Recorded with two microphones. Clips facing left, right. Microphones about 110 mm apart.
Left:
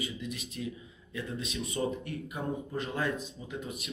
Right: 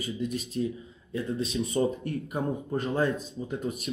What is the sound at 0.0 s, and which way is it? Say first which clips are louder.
A man's voice: right 6 dB; 40° right (ahead or behind).